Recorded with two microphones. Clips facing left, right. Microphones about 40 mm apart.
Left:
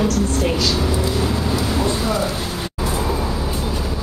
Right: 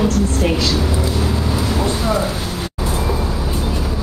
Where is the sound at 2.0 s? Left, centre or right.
Centre.